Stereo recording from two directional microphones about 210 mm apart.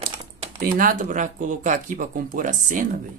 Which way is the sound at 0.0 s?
30° right (ahead or behind).